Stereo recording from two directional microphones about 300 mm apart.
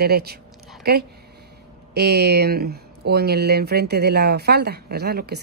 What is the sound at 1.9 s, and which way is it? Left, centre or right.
Speech, right.